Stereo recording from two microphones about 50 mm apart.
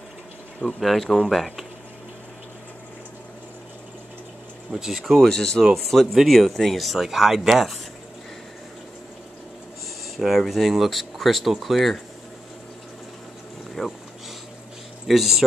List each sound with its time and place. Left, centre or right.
0.7 s speech: centre
4.7 s speech: centre
5.0 s speech: centre
10.1 s speech: centre
13.8 s a sound: centre
15.0 s speech: centre